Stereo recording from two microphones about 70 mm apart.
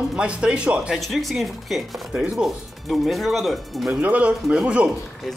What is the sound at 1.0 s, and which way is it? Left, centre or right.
Speech, centre.